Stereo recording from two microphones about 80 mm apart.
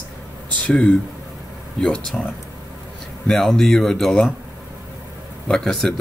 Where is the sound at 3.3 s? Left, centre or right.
Centre.